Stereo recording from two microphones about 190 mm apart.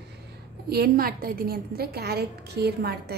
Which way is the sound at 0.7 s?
55° right (ahead or behind).